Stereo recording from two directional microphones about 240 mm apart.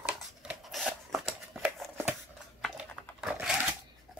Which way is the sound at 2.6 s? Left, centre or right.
Centre.